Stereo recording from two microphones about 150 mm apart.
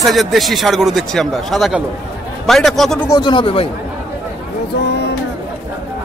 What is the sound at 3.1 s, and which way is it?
Speech, 30° left (ahead or behind).